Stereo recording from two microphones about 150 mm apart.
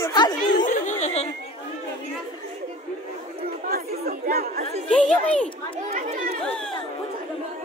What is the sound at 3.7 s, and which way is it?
Chatter, 90° right.